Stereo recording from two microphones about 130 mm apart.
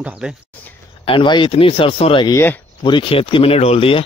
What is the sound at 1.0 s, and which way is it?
Speech, 40° left (ahead or behind).